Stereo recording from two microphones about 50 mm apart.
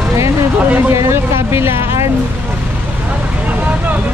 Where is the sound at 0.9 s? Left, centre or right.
Right.